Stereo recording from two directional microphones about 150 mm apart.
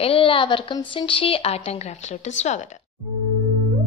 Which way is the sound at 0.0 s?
40° left (ahead or behind).